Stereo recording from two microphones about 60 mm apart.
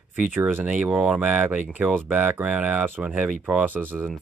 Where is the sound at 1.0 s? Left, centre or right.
Right.